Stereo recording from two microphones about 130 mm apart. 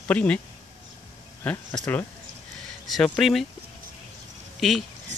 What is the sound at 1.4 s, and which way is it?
Speech, 15° left (ahead or behind).